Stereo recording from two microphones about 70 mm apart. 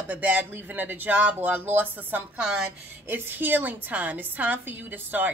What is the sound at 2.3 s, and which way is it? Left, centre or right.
Speech, centre.